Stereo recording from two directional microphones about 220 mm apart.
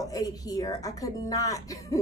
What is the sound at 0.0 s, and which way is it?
Speech, 15° left (ahead or behind).